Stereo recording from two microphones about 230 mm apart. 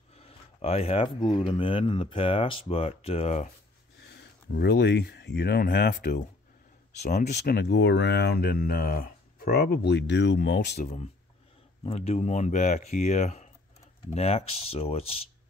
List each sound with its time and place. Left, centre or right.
0.1 s speech: left
4.0 s speech: left
10.8 s speech: left